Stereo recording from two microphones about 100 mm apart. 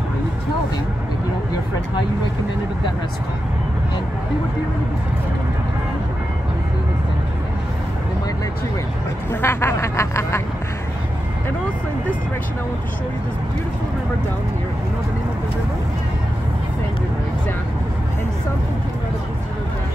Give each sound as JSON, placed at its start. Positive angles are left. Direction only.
{"t": 9.3, "sound": "speech", "side_deg": 25}